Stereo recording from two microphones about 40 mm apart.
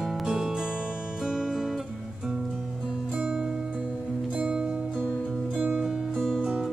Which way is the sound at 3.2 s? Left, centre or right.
Right.